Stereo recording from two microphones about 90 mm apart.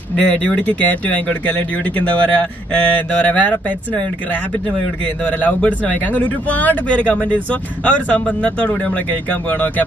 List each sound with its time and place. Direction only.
0.1 s speech: 15° left (ahead or behind)